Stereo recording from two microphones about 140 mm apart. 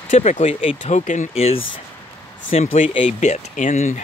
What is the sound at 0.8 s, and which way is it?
Speech, 60° left (ahead or behind).